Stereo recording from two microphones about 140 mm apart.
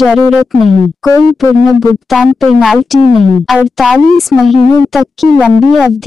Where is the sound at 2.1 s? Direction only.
Centre (ahead or behind).